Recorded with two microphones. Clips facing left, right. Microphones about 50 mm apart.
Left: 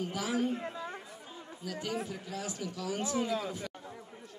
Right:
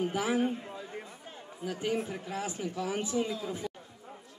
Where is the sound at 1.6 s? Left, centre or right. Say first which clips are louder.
Right 4 dB; right.